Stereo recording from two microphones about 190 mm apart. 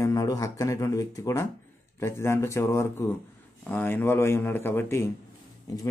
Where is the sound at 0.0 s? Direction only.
20° left (ahead or behind).